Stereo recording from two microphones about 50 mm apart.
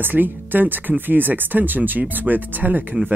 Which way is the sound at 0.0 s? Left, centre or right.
Right.